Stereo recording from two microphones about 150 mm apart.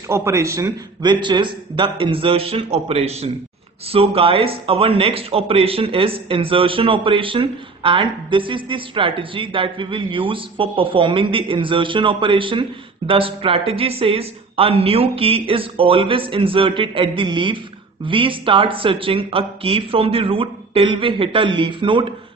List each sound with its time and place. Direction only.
0.1 s speech: 20° right (ahead or behind); by 22.1 s 35° right (ahead or behind)